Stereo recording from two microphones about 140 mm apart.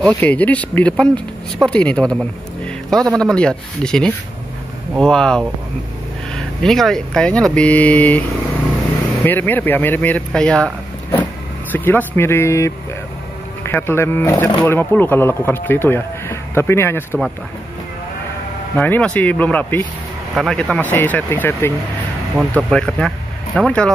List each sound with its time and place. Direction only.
0.0 s speech: 10° left (ahead or behind)
9.2 s speech: 15° left (ahead or behind)
11.7 s speech: 15° left (ahead or behind)
18.8 s speech: 10° left (ahead or behind)